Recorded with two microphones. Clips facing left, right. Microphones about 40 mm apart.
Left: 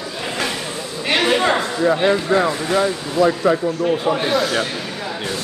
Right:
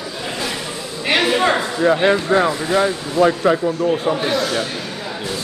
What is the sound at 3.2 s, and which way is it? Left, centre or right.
Speech, right.